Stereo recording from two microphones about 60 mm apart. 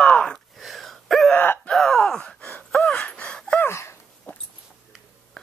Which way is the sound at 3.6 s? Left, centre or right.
Left.